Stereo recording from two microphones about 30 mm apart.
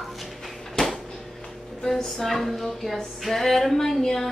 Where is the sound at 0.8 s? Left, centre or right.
Left.